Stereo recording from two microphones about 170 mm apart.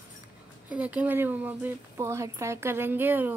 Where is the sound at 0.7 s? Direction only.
10° right (ahead or behind).